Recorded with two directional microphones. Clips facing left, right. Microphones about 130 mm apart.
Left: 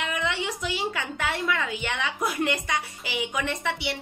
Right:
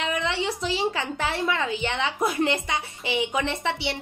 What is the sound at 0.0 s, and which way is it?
A woman's voice, 30° right (ahead or behind).